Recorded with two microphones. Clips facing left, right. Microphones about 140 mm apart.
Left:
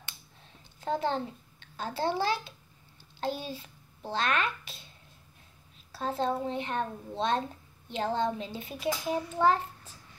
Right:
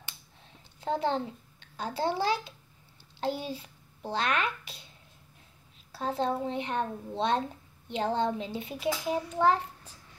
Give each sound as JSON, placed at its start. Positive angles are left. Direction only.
{"t": 0.7, "sound": "a child's voice", "side_deg": -15}
{"t": 5.9, "sound": "a child's voice", "side_deg": -15}